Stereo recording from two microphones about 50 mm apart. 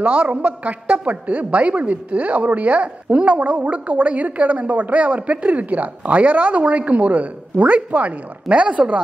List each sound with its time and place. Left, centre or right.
0.0 s a woman's voice: right